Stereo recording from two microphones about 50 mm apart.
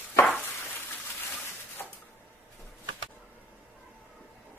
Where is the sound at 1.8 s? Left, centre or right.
Left.